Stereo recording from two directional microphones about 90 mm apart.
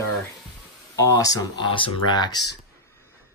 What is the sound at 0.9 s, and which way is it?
Speech, 40° left (ahead or behind).